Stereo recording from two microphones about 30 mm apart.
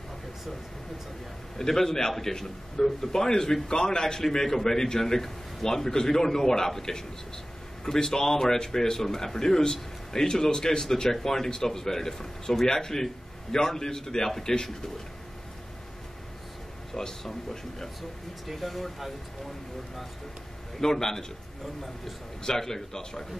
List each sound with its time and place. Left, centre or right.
1.6 s a man's voice: centre
16.9 s a man's voice: centre
18.5 s speech: centre
20.8 s a man's voice: centre
22.4 s a man's voice: centre